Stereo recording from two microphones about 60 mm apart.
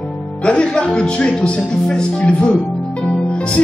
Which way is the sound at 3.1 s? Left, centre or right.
Centre.